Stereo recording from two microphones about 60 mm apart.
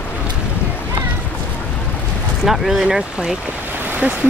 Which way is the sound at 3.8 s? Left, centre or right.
Right.